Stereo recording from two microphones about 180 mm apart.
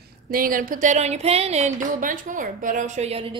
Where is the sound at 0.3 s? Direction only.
50° right (ahead or behind).